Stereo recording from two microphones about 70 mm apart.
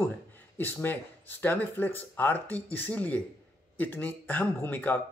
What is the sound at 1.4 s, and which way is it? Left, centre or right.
Speech, left.